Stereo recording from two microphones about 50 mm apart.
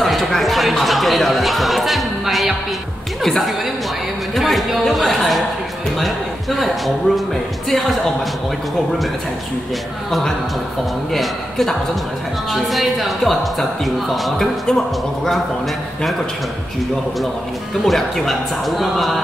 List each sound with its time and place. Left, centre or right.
0.0 s a sound: centre
0.4 s speech: centre
11.1 s speech: centre
17.8 s speech: centre